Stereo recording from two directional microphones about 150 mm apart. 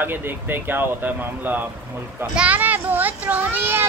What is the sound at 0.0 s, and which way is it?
A child's voice, 10° right (ahead or behind).